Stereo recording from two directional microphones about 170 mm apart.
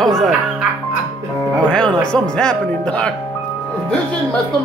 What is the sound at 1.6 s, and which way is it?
Music, 5° left (ahead or behind).